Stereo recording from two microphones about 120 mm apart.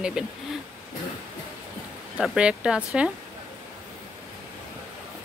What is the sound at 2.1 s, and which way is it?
Speech, 10° right (ahead or behind).